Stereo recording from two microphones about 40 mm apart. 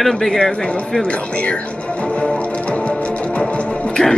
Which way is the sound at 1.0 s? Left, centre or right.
Left.